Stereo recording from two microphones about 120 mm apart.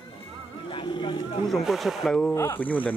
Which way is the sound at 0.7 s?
40° left (ahead or behind).